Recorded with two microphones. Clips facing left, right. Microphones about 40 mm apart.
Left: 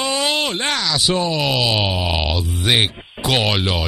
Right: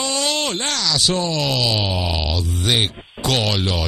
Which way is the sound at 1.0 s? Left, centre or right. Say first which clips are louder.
Left 3 dB; centre.